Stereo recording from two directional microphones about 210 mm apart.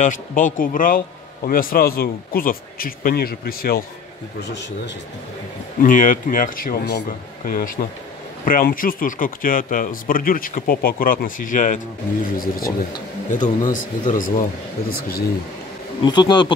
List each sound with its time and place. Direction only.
0.0 s a man's voice: 40° left (ahead or behind)
5.8 s a man's voice: 40° left (ahead or behind)
16.0 s speech: 20° left (ahead or behind)